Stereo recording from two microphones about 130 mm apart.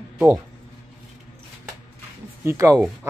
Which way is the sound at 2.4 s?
25° right (ahead or behind).